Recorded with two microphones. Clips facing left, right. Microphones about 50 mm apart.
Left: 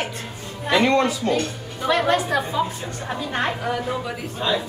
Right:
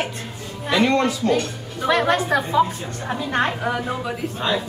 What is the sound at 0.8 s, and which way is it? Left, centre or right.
Speech, left.